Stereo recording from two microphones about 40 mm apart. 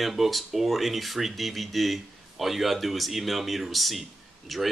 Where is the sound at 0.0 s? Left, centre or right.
Centre.